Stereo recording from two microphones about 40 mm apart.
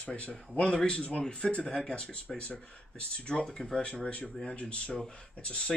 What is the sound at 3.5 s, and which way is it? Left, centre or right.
Speech, centre.